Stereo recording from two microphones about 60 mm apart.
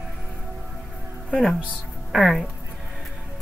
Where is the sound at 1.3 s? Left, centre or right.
Centre.